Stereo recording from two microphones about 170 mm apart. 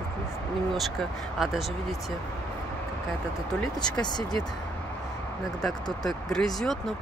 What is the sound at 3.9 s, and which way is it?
Speech, 25° left (ahead or behind).